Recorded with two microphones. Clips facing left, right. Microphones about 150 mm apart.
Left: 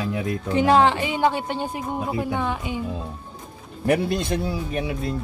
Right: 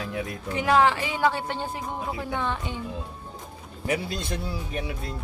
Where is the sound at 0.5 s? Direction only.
30° left (ahead or behind); by 2.8 s 10° left (ahead or behind).